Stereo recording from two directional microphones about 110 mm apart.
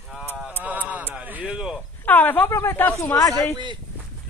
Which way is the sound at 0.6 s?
15° right (ahead or behind).